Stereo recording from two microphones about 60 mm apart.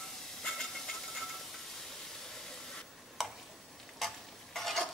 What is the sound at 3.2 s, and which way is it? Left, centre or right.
Tick-tock, centre.